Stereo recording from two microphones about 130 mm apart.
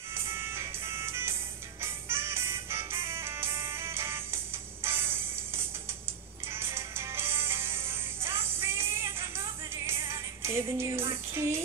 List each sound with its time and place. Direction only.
0.1 s music: 20° right (ahead or behind)